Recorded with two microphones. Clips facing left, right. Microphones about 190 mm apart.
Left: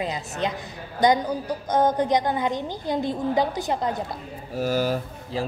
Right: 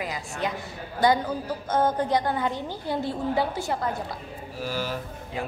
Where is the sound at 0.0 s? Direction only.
20° left (ahead or behind).